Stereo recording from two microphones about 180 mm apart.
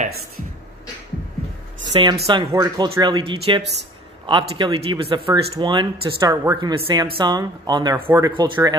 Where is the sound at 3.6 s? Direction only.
70° right (ahead or behind).